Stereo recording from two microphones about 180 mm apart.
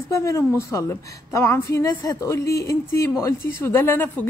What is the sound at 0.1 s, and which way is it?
A woman's voice, 15° left (ahead or behind).